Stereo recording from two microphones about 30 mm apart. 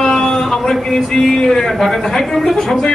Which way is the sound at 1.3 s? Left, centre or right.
Left.